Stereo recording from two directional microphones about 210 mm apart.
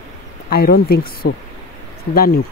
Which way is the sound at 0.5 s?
45° left (ahead or behind).